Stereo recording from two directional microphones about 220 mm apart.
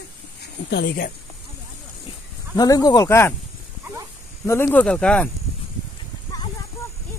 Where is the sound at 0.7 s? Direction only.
45° left (ahead or behind).